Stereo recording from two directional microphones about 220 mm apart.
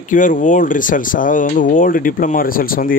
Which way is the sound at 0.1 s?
35° left (ahead or behind).